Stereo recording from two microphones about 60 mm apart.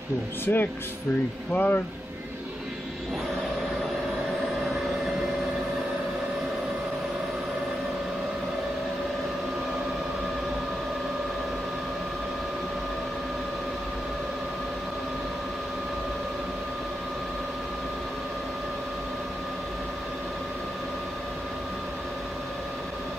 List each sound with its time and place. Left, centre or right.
0.5 s speech: left